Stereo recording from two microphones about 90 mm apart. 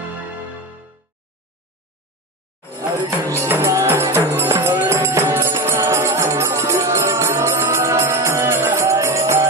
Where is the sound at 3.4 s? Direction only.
30° right (ahead or behind).